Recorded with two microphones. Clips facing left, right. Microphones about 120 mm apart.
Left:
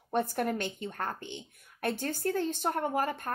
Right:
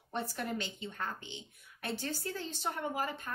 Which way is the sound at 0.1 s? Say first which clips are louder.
Left 7 dB; 50° left (ahead or behind).